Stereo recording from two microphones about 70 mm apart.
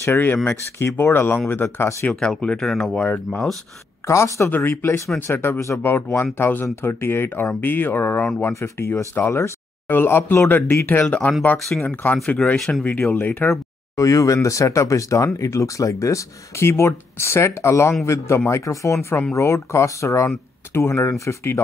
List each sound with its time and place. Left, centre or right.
0.0 s speech: left
0.8 s speech: left
2.0 s speech: centre
2.9 s speech: centre
4.1 s speech: left
4.5 s speech: left
12.5 s speech: centre
13.1 s speech: left
13.5 s speech: left